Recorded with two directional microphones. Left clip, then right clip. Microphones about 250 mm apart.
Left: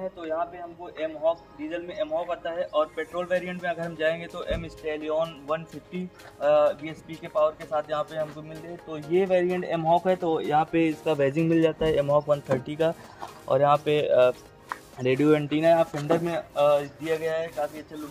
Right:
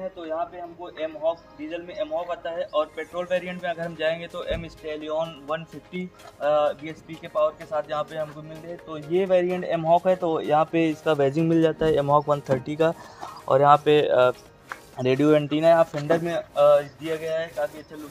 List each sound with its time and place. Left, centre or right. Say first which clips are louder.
0.2 s a man's voice: even; centre